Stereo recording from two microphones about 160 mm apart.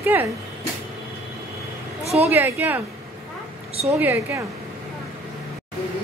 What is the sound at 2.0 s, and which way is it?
Speech, 40° right (ahead or behind).